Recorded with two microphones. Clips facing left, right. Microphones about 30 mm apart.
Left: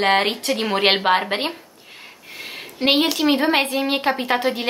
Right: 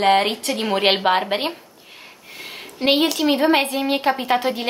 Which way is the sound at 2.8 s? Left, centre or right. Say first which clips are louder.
Even; centre.